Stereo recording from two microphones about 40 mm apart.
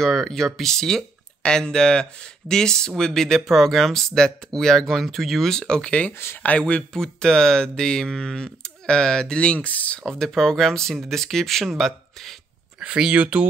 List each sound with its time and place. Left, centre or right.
0.0 s speech: centre
5.6 s speech: left
9.7 s speech: left
10.0 s speech: centre
12.8 s speech: right